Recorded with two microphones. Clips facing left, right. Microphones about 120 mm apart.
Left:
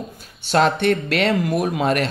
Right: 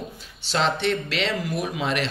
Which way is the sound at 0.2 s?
50° left (ahead or behind).